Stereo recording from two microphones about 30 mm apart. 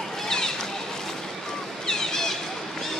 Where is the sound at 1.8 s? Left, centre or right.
Centre.